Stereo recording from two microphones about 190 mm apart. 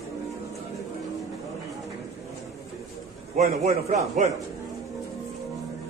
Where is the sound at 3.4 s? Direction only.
35° right (ahead or behind).